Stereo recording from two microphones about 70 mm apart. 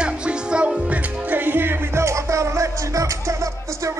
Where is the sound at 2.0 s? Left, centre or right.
Right.